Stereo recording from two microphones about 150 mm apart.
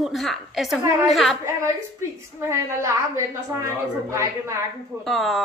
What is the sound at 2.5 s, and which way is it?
A woman's voice, 20° right (ahead or behind).